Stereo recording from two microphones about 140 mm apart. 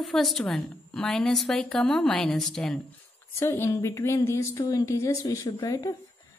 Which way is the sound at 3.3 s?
20° left (ahead or behind).